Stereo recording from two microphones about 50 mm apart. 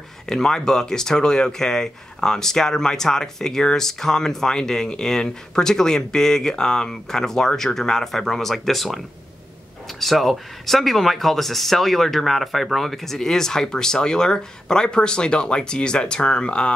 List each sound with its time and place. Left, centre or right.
0.3 s speech: centre